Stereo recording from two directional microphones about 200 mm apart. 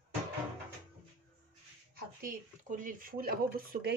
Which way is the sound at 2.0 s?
45° right (ahead or behind).